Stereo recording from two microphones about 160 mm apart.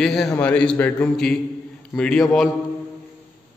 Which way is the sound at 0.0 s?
Centre (ahead or behind).